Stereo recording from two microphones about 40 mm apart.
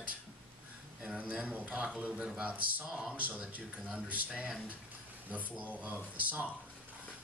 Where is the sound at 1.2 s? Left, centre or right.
Right.